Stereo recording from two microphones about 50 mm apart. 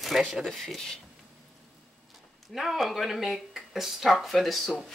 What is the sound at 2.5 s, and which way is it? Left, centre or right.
Speech, centre.